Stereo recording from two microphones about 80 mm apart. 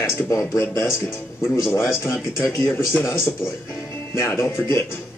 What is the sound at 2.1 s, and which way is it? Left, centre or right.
Speech, left.